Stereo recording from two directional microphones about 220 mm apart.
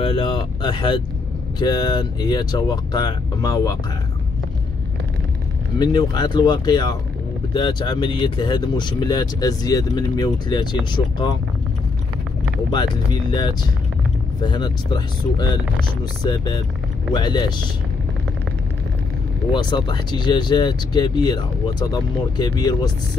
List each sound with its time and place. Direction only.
0.0 s speech: 20° left (ahead or behind)
5.8 s speech: 20° left (ahead or behind)
12.7 s speech: 20° left (ahead or behind)
17.1 s speech: 20° left (ahead or behind)
19.5 s speech: 20° left (ahead or behind)